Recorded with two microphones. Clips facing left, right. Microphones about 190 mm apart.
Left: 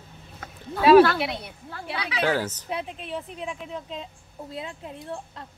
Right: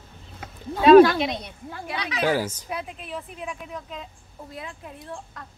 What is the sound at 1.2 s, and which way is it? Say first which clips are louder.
A woman's voice: right 3 dB; 10° left (ahead or behind).